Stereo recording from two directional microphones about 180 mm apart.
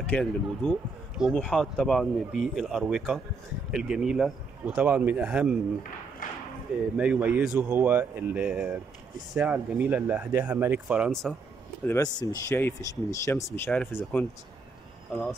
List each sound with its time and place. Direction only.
0.0 s speech: 10° left (ahead or behind)
0.7 s speech: centre (ahead or behind)
6.2 s speech: 50° left (ahead or behind)
7.0 s speech: 5° right (ahead or behind)
11.8 s speech: 15° left (ahead or behind)
13.7 s speech: 5° left (ahead or behind)